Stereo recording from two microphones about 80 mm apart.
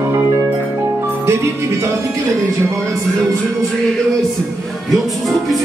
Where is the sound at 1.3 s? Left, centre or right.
Right.